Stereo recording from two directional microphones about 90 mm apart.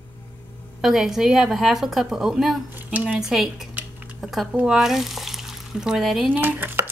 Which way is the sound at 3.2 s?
5° right (ahead or behind).